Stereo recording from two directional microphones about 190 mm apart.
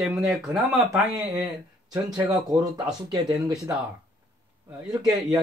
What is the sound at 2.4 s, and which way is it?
A man's voice, 20° right (ahead or behind).